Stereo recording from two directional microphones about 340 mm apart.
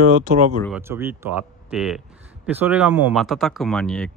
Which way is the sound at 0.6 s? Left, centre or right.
Centre.